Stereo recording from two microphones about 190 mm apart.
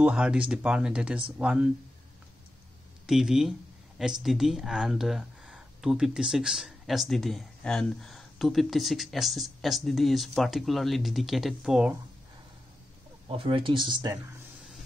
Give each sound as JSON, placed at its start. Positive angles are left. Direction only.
{"t": 0.0, "sound": "speech", "side_deg": -5}
{"t": 3.1, "sound": "speech", "side_deg": 0}
{"t": 13.3, "sound": "speech", "side_deg": -30}